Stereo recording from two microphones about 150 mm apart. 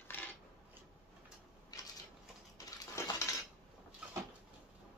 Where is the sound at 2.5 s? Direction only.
25° left (ahead or behind).